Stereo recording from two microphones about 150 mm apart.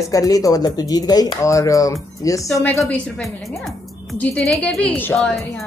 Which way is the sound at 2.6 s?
10° left (ahead or behind).